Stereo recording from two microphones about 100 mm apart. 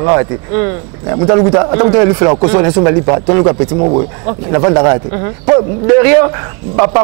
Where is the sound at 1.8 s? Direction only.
Centre (ahead or behind).